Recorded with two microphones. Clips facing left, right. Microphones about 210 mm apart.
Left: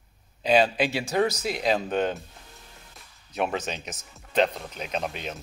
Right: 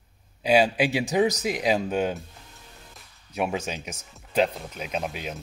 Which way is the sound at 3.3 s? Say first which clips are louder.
Even; 10° right (ahead or behind).